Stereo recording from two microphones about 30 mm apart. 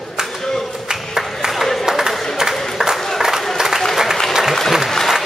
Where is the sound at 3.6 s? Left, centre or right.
Centre.